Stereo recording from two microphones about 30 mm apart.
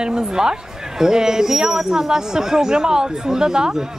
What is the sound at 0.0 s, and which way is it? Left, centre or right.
Speech, right.